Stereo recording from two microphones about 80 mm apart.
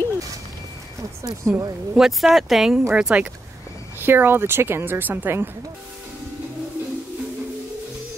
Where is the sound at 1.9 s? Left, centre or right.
Centre.